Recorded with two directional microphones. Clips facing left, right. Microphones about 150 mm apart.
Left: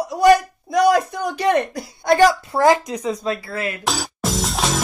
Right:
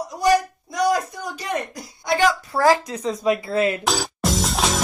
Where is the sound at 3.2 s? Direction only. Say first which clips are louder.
Right 5 dB; 20° right (ahead or behind).